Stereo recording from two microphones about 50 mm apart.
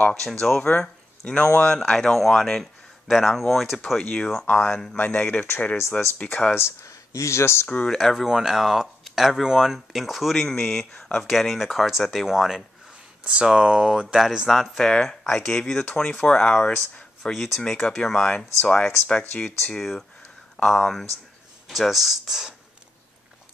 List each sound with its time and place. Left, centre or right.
0.1 s speech: centre
0.7 s speech: left
1.8 s speech: centre
4.0 s speech: centre
4.5 s speech: left
6.5 s speech: left
7.6 s speech: left
7.9 s speech: centre
10.3 s speech: centre
11.2 s speech: centre
13.2 s speech: centre
14.5 s speech: centre
17.6 s speech: centre
19.6 s speech: centre